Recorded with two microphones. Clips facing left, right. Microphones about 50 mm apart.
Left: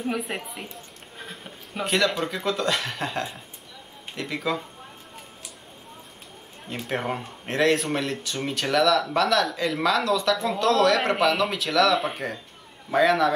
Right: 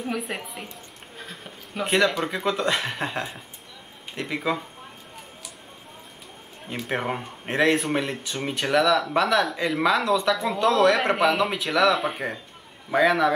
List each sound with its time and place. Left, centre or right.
0.0 s a woman's voice: centre
2.0 s speech: centre
6.7 s speech: centre